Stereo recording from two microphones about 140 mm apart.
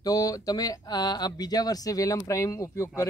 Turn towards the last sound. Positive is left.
turn(degrees=20)  # may be behind; listen again after turning